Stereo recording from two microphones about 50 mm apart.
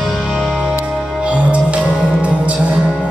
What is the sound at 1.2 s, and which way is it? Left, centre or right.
Music, right.